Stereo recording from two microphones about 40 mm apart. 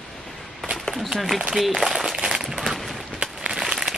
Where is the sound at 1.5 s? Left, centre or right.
Centre.